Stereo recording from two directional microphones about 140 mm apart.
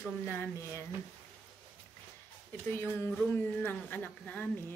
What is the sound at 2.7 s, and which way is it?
Speech, 15° left (ahead or behind).